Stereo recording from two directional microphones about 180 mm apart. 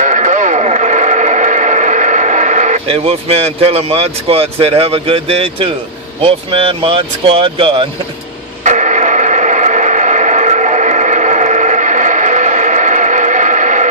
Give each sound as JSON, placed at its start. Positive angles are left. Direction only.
{"t": 0.0, "sound": "vehicle", "side_deg": -40}
{"t": 6.2, "sound": "speech", "side_deg": -30}
{"t": 8.6, "sound": "a sound", "side_deg": -40}